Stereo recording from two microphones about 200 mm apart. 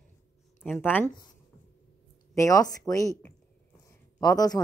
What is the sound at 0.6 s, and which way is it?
Speech, 10° left (ahead or behind).